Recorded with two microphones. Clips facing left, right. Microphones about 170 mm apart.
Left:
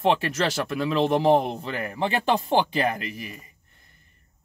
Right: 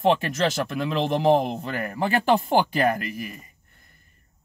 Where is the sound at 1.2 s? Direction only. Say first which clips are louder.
Right 2 dB; centre (ahead or behind).